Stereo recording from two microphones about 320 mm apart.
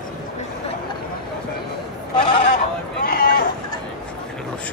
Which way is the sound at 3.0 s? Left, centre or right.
Left.